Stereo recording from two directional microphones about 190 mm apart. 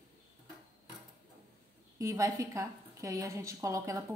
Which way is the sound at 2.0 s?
15° right (ahead or behind).